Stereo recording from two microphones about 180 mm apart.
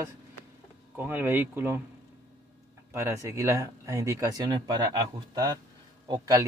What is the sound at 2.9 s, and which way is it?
Speech, 15° right (ahead or behind).